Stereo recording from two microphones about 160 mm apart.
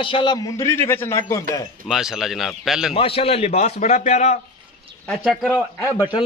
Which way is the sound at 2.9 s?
35° left (ahead or behind).